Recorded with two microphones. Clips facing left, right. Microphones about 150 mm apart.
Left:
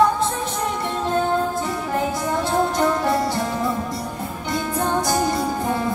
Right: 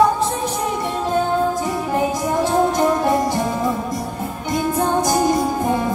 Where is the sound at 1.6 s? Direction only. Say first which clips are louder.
Right 3 dB; 15° right (ahead or behind).